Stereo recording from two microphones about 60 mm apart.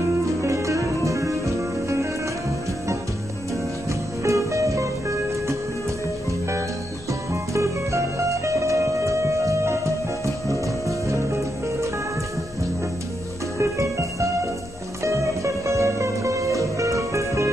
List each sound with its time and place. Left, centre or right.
0.4 s music: right
4.2 s music: right
7.5 s music: right
13.6 s music: right